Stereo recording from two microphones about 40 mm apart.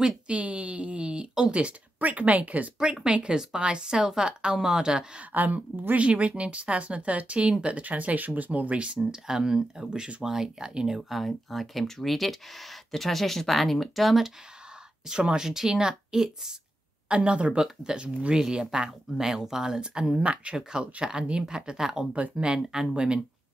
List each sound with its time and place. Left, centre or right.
0.0 s a woman's voice: right
2.8 s a woman's voice: right
5.3 s a woman's voice: right
6.0 s speech: right
7.3 s a woman's voice: centre
7.6 s speech: right
9.0 s speech: centre
11.0 s speech: centre
15.0 s speech: centre
17.1 s a woman's voice: right
22.1 s a woman's voice: right
22.6 s a woman's voice: centre